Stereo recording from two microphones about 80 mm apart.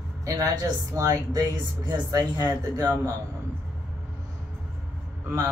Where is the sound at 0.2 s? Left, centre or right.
Right.